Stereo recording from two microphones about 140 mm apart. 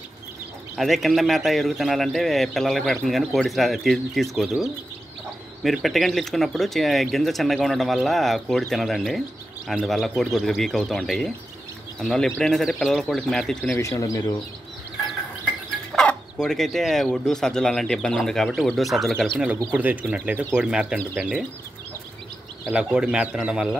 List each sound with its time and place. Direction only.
0.7 s speech: centre (ahead or behind)
13.7 s speech: 20° left (ahead or behind)
15.9 s mechanisms: 5° left (ahead or behind)
16.4 s speech: centre (ahead or behind)
19.3 s speech: 10° right (ahead or behind)
22.7 s speech: 5° right (ahead or behind)